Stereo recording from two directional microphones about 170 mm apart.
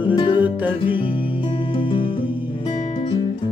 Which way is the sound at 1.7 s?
30° left (ahead or behind).